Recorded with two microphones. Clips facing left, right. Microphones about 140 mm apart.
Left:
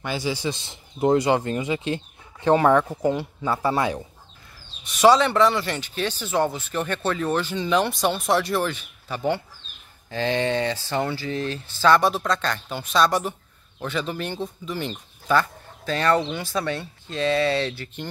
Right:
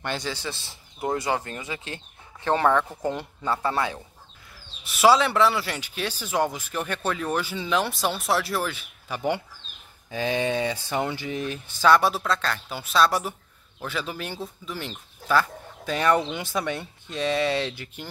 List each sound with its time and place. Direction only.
0.0 s speech: 5° left (ahead or behind)
4.8 s speech: 5° right (ahead or behind)